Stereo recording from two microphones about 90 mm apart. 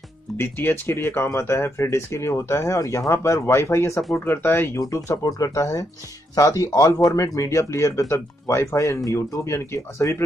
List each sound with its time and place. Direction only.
0.4 s speech: 25° left (ahead or behind)
4.7 s speech: 40° left (ahead or behind)